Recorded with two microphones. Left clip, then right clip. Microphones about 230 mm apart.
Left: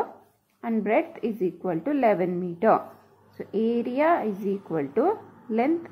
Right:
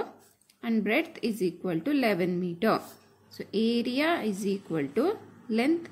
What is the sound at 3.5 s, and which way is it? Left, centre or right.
A woman's voice, right.